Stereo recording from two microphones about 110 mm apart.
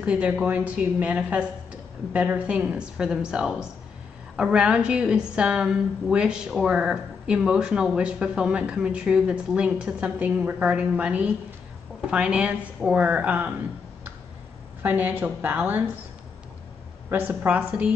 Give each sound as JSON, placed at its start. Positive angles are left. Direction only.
{"t": 0.0, "sound": "a woman's voice", "side_deg": -10}
{"t": 14.8, "sound": "a woman's voice", "side_deg": -15}
{"t": 17.1, "sound": "a woman's voice", "side_deg": -15}